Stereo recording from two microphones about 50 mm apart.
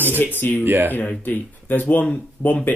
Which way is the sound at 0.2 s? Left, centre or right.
Left.